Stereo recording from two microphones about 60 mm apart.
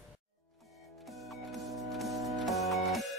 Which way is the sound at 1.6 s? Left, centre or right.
Centre.